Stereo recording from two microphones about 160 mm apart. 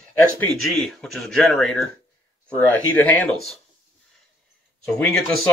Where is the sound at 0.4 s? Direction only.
Centre (ahead or behind).